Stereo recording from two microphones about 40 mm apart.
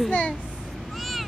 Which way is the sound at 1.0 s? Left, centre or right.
Centre.